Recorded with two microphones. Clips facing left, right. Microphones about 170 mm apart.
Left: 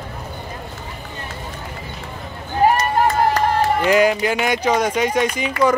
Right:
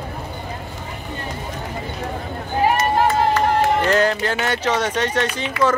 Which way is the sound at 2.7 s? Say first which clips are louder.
Even; 40° left (ahead or behind).